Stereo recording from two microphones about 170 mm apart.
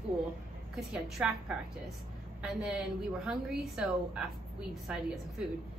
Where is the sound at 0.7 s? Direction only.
Centre (ahead or behind).